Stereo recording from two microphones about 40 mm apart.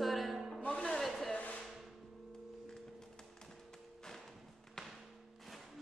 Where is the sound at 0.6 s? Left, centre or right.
Left.